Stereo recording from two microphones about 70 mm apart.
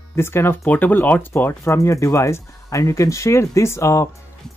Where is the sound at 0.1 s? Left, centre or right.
Left.